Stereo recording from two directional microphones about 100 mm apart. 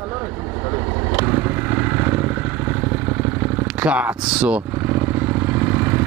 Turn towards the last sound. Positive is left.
turn(degrees=-20)  # may be behind; listen again after turning